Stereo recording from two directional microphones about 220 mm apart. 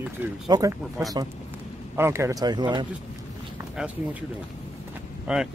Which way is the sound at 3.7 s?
5° right (ahead or behind).